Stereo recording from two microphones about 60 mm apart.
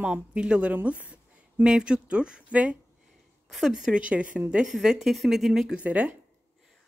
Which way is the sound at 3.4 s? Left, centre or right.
Centre.